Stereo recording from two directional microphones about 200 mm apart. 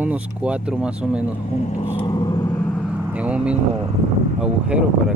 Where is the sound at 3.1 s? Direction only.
5° right (ahead or behind).